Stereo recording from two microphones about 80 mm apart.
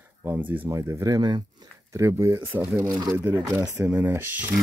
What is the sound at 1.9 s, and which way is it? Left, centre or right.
A man's voice, right.